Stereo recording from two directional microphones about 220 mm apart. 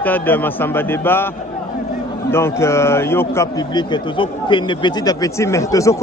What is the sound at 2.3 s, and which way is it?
A man's voice, 10° left (ahead or behind).